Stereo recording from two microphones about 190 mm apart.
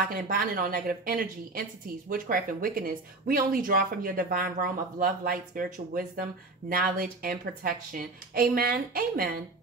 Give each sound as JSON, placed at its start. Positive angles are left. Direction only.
{"t": 0.1, "sound": "speech", "side_deg": -50}